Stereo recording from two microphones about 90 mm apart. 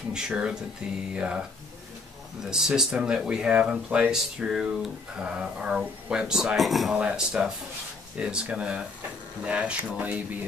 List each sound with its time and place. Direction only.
0.1 s speech: 10° right (ahead or behind)
2.4 s speech: 5° right (ahead or behind)